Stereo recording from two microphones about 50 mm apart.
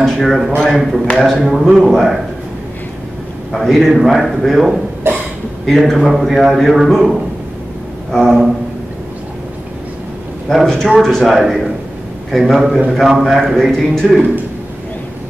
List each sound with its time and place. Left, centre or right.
0.0 s a man's voice: centre
1.4 s a man's voice: centre
3.5 s a man's voice: centre
5.1 s a sound: right
5.8 s a man's voice: centre
10.5 s a man's voice: centre